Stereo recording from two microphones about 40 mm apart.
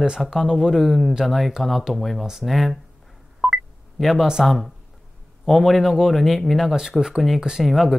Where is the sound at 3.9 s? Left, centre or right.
Centre.